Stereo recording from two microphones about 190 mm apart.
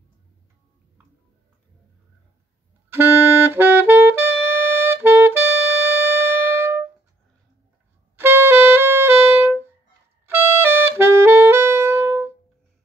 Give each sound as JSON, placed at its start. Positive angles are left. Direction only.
{"t": 2.9, "sound": "saxophone", "side_deg": -10}
{"t": 8.2, "sound": "music", "side_deg": -10}